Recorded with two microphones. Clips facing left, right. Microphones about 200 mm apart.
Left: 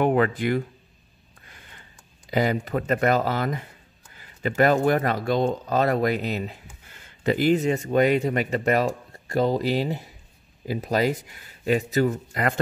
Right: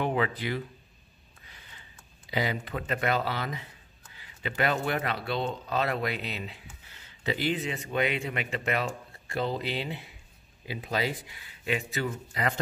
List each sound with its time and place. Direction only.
0.0 s speech: 50° left (ahead or behind)
1.4 s a sound: 50° left (ahead or behind)
2.3 s speech: 45° left (ahead or behind)
12.1 s speech: 55° left (ahead or behind)